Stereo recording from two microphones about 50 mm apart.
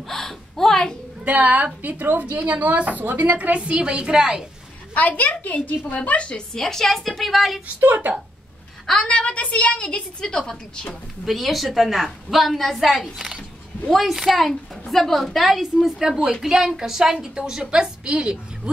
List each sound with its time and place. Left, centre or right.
0.1 s a sound: centre
1.2 s a woman's voice: right; by 4.5 s centre
4.9 s a woman's voice: left
6.5 s a woman's voice: centre
7.6 s a woman's voice: right
8.8 s a woman's voice: centre
9.1 s a woman's voice: left
10.3 s a woman's voice: centre
13.0 s a woman's voice: centre
13.8 s a woman's voice: centre